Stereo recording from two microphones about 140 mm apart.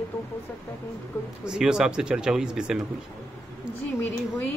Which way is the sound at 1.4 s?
5° right (ahead or behind).